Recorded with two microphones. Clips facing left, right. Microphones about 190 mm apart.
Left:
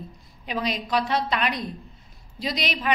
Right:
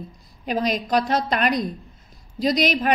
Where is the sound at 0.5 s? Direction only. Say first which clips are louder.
Right 5 dB; 45° right (ahead or behind).